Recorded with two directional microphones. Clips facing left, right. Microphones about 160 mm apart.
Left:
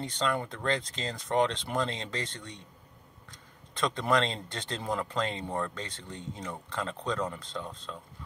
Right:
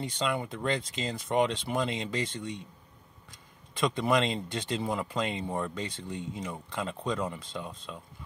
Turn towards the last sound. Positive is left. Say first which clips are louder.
# even
turn(degrees=-10)  # may be behind; listen again after turning